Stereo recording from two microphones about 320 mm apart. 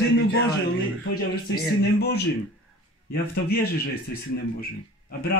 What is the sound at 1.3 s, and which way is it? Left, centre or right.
A man's voice, left.